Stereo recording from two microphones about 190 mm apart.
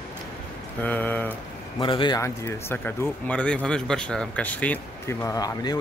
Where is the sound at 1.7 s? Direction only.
25° left (ahead or behind).